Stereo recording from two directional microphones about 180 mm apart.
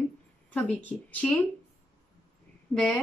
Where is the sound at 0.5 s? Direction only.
10° left (ahead or behind).